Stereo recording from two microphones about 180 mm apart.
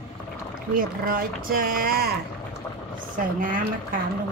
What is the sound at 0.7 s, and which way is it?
Speech, 50° right (ahead or behind).